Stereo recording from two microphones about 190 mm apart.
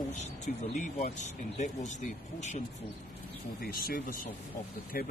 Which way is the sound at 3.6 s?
50° left (ahead or behind).